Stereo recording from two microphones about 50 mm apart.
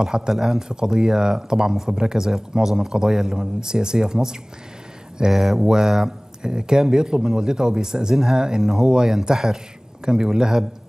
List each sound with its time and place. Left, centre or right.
0.0 s speech: centre